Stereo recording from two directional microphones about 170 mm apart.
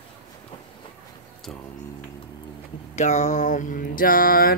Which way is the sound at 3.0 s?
45° left (ahead or behind).